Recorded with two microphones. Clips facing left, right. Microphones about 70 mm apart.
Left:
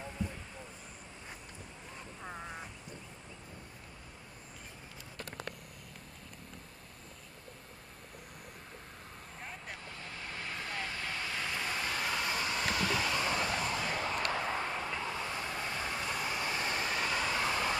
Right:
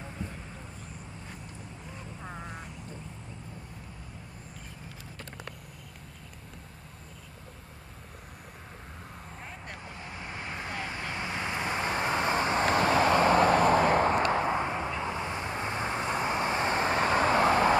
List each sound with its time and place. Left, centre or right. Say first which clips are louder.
2.2 s quack: right 1 dB; centre
9.4 s vehicle: right 1 dB; centre
9.8 s vehicle: right 4 dB; centre; by 17.7 s right